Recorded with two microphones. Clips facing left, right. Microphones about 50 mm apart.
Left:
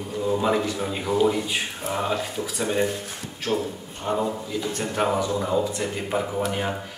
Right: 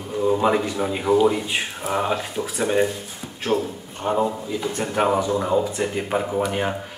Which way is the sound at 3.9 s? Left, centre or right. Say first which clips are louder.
Right 4 dB; centre.